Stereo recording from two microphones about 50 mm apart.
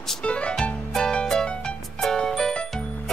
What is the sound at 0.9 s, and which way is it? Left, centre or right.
Music, centre.